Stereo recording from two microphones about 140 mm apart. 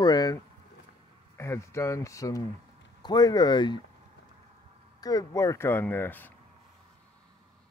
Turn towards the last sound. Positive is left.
turn(degrees=15)  # may be behind; listen again after turning